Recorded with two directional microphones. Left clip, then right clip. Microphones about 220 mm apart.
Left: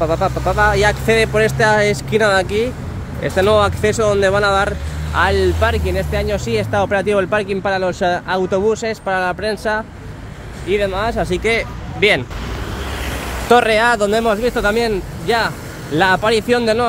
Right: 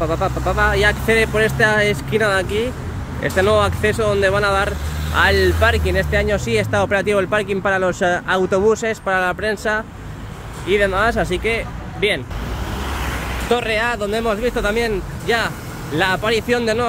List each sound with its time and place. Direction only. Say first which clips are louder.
0.0 s speech: left 3 dB; 10° left (ahead or behind)
11.2 s speech: left 3 dB; 15° left (ahead or behind)
13.5 s speech: left 7 dB; 25° left (ahead or behind)